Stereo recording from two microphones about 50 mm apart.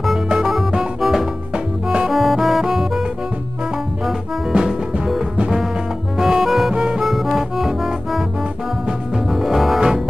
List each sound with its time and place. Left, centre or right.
2.0 s music: centre
4.0 s music: centre
9.3 s music: centre